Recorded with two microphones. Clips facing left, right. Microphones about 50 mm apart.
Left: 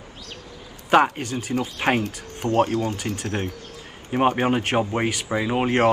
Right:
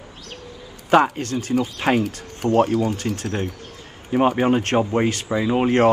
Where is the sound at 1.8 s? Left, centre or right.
Left.